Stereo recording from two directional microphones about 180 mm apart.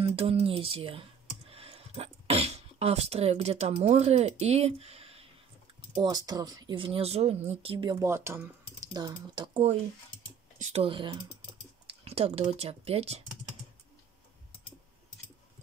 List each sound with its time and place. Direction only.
0.0 s speech: 30° right (ahead or behind)
5.9 s speech: 20° right (ahead or behind)